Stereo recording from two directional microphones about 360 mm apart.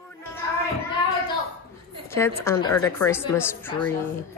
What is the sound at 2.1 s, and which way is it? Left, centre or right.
A woman's voice, centre.